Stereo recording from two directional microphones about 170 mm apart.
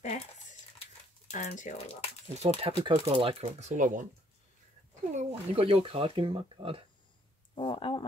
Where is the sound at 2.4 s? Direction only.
35° right (ahead or behind).